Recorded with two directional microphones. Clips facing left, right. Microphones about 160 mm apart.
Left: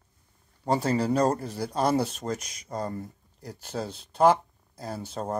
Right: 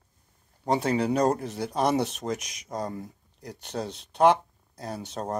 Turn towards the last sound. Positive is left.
turn(degrees=0)  # may be behind; listen again after turning